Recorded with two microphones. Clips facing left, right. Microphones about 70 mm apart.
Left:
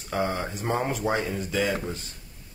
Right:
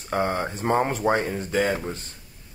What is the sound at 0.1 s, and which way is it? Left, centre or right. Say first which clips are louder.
Speech: right 3 dB; right.